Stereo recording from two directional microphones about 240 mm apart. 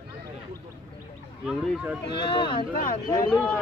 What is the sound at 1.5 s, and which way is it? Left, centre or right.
Speech, centre.